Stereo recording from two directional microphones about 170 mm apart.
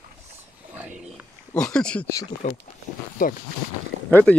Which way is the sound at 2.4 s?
45° left (ahead or behind).